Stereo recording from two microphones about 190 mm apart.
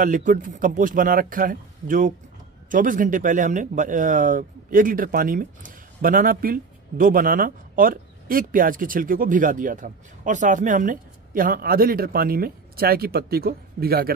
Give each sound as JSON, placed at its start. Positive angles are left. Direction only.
{"t": 0.0, "sound": "speech", "side_deg": -45}